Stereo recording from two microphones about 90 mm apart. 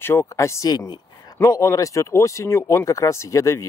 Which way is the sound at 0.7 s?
45° left (ahead or behind).